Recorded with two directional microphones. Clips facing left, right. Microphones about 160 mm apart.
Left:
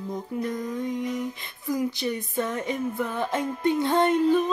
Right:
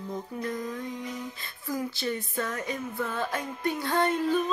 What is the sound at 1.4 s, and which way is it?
Female singing, 20° left (ahead or behind).